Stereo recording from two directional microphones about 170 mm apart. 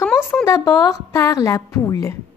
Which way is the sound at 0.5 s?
15° left (ahead or behind).